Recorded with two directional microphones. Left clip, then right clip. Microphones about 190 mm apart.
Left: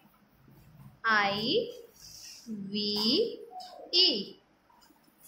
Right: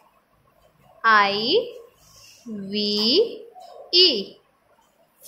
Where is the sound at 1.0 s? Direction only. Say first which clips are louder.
Right 10 dB; 20° right (ahead or behind).